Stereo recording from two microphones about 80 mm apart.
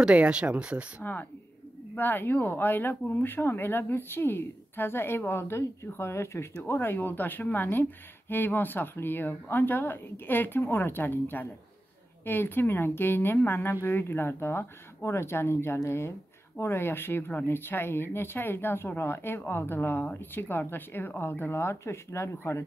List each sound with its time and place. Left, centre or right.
0.0 s speech: centre
2.0 s speech: left